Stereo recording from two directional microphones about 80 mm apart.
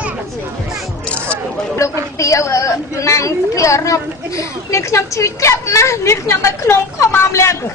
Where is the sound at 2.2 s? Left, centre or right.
Left.